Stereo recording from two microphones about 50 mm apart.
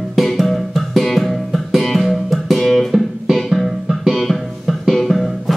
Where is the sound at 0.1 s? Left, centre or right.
Centre.